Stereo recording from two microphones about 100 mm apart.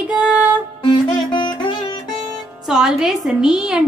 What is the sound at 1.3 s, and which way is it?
Music, 50° left (ahead or behind).